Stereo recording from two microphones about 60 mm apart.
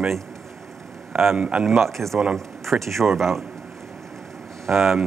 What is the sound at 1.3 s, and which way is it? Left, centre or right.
Speech, centre.